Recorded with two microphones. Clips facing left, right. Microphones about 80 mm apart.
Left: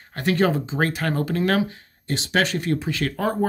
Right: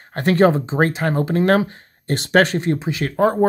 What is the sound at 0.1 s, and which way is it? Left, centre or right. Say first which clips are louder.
Speech: right 6 dB; right.